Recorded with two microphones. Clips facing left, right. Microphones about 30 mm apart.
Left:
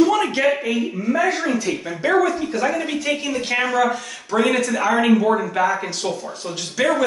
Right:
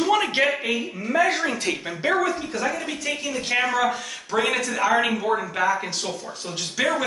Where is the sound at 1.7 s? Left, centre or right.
Centre.